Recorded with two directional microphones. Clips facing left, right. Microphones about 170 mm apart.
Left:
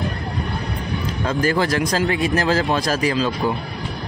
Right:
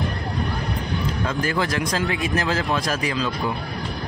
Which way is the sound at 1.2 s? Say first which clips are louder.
Left 6 dB; 35° left (ahead or behind).